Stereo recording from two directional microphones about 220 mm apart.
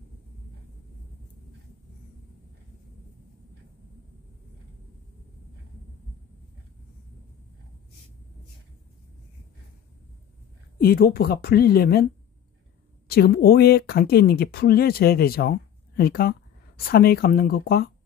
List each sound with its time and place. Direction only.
10.8 s speech: 45° left (ahead or behind)
13.1 s speech: 45° left (ahead or behind)